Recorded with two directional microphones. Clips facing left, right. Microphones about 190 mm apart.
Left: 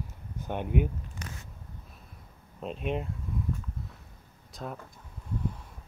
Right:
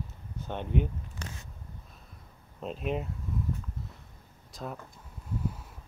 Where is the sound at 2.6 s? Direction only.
Centre (ahead or behind).